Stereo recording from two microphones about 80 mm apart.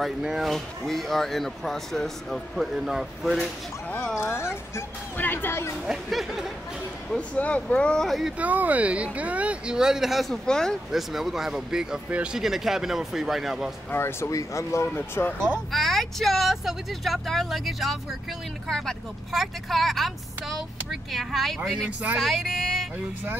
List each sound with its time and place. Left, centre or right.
0.2 s speech: centre
4.2 s speech: left
5.9 s speech: centre
7.2 s speech: centre
8.4 s speech: centre
10.9 s speech: centre
13.8 s speech: left
15.0 s speech: left
15.7 s speech: centre